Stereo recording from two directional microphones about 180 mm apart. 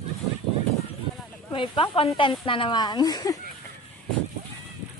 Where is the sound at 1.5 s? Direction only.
30° left (ahead or behind).